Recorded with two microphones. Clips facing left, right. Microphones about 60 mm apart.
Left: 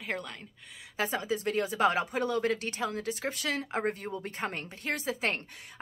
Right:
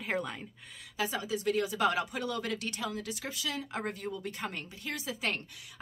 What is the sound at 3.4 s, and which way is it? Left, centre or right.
Speech, left.